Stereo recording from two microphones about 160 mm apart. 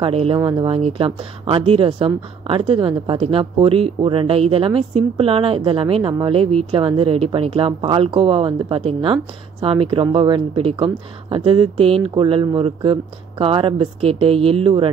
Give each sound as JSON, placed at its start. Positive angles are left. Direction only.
{"t": 0.0, "sound": "speech", "side_deg": -35}